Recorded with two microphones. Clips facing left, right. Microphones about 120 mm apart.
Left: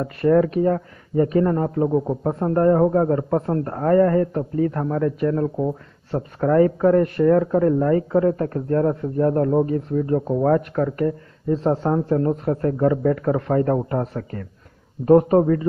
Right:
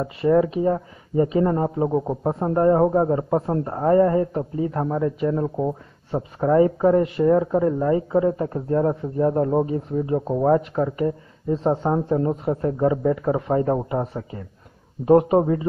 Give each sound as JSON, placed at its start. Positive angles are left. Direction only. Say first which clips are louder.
{"t": 0.0, "sound": "a man's voice", "louder": "left 1 dB", "side_deg": -10}
{"t": 1.9, "sound": "a man's voice", "louder": "left 1 dB", "side_deg": -5}